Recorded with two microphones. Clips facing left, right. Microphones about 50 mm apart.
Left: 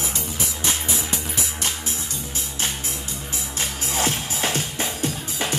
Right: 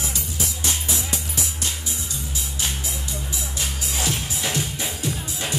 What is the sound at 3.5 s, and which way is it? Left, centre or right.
Music, left.